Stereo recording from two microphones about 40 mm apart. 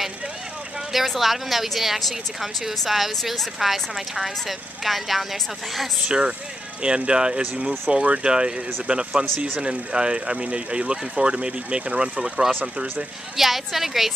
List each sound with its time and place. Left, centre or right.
0.9 s speech: centre
3.5 s speech: centre
6.0 s speech: right
13.4 s speech: centre